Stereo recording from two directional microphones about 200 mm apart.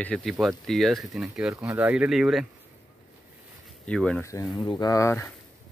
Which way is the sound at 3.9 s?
5° left (ahead or behind).